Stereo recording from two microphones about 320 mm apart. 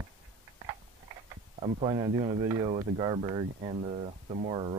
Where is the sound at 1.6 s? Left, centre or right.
Centre.